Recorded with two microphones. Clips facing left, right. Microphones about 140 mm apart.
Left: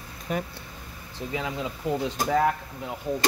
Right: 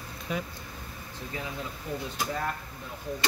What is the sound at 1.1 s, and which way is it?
Speech, 90° left.